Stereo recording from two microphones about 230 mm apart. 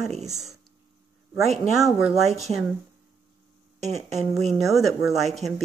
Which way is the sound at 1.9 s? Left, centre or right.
Centre.